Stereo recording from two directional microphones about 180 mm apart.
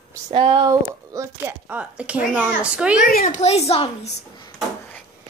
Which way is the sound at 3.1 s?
50° left (ahead or behind).